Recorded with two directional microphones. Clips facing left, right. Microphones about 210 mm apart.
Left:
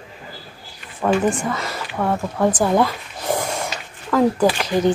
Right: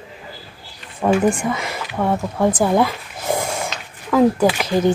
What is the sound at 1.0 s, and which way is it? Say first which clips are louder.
Speech: right 2 dB; 10° right (ahead or behind).